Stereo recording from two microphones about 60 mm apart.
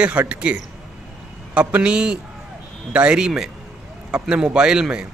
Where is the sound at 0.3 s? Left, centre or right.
Right.